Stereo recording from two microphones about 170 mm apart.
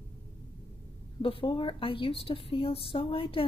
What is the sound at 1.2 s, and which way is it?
A woman's voice, 30° left (ahead or behind).